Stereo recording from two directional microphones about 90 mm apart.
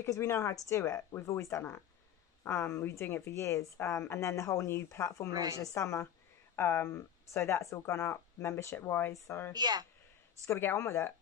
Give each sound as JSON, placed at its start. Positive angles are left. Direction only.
{"t": 0.0, "sound": "speech", "side_deg": 30}
{"t": 5.3, "sound": "speech", "side_deg": -45}
{"t": 5.6, "sound": "speech", "side_deg": 35}
{"t": 9.5, "sound": "speech", "side_deg": -50}
{"t": 10.4, "sound": "speech", "side_deg": 30}